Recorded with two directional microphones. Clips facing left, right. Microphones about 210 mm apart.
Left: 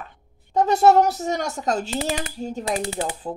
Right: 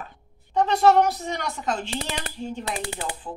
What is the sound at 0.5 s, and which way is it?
Speech, 40° left (ahead or behind).